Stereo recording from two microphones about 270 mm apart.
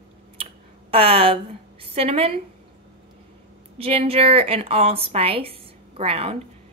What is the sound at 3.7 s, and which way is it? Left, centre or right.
A woman's voice, right.